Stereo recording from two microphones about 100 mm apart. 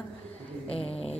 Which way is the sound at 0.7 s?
85° left.